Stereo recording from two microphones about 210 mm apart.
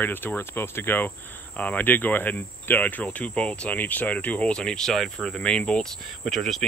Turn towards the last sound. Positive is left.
turn(degrees=0)  # may be behind; listen again after turning